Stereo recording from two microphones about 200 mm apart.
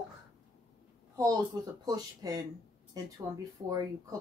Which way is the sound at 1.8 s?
20° right (ahead or behind).